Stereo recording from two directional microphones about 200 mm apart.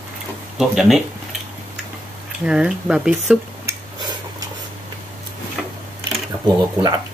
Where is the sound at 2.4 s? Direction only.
5° right (ahead or behind).